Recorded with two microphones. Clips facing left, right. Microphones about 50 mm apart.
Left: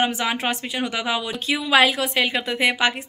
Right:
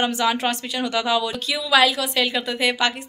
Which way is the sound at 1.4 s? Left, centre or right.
Left.